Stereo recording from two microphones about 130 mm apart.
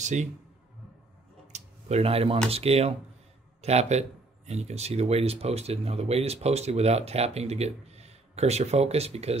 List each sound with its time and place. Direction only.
0.0 s speech: 65° right (ahead or behind)
1.5 s a sound: 55° right (ahead or behind)
2.5 s speech: 50° right (ahead or behind)